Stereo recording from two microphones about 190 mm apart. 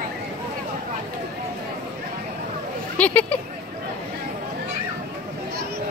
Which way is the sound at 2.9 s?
10° left (ahead or behind).